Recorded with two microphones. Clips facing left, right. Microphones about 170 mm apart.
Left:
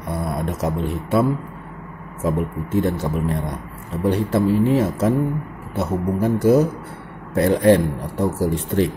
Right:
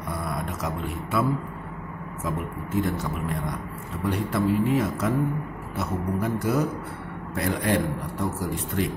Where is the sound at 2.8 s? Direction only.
30° left (ahead or behind).